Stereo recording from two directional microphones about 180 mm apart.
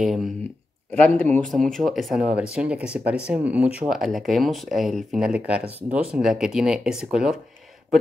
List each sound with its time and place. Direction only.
0.0 s speech: centre (ahead or behind)
0.9 s speech: 10° left (ahead or behind)
5.7 s speech: 35° right (ahead or behind)
5.9 s speech: 5° right (ahead or behind)